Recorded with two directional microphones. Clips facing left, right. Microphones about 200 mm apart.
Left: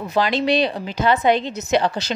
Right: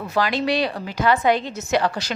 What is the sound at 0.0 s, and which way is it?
A woman's voice, 20° left (ahead or behind).